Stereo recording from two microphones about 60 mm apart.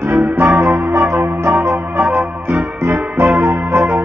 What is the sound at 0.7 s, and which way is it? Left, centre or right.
Music, right.